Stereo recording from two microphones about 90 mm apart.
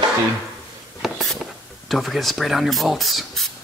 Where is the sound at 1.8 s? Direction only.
Centre (ahead or behind).